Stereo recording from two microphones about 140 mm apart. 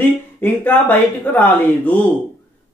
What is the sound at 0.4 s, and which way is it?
Speech, 15° left (ahead or behind).